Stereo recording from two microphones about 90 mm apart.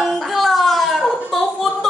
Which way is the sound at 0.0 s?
Centre (ahead or behind).